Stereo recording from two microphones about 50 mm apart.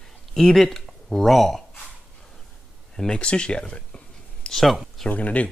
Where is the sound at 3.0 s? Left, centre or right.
Centre.